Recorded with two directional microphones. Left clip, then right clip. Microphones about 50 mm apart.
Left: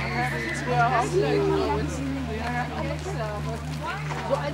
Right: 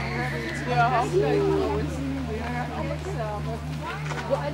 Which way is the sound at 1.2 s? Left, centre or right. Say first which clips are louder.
Even; left.